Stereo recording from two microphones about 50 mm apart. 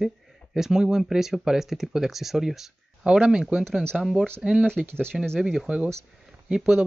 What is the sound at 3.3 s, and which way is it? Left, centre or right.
Speech, centre.